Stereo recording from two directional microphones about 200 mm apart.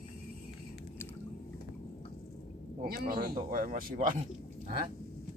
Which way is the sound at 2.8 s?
50° right (ahead or behind).